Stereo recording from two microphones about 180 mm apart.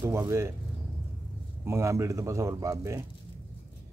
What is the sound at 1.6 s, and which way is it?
A man's voice, 15° right (ahead or behind).